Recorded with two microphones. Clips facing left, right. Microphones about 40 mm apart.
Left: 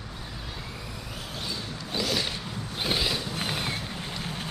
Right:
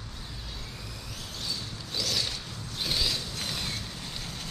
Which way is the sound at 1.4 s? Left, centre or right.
Left.